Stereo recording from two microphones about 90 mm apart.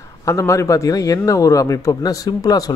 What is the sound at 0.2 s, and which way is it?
A man's voice, 35° left (ahead or behind).